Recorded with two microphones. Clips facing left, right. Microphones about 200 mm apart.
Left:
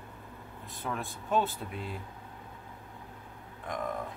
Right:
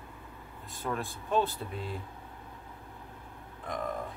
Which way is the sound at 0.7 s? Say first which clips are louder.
Right 2 dB; centre (ahead or behind).